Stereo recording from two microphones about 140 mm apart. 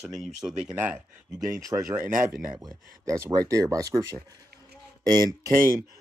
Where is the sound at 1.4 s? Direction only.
20° right (ahead or behind).